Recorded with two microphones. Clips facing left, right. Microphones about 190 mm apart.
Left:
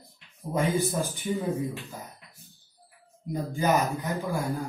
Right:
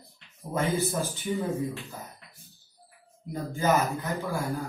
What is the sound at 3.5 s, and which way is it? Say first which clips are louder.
Speech: even; 15° left (ahead or behind).